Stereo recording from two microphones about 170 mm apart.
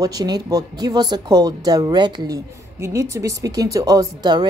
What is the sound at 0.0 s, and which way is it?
Speech, 20° right (ahead or behind).